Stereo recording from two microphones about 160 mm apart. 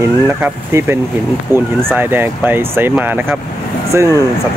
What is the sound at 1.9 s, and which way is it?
Speech, 15° right (ahead or behind).